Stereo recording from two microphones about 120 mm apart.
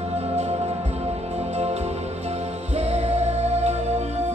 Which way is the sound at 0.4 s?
65° right (ahead or behind).